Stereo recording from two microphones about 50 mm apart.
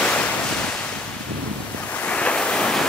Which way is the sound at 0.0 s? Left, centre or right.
Left.